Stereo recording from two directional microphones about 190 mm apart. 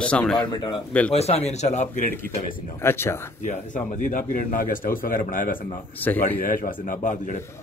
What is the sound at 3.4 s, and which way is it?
A man's voice, 40° left (ahead or behind).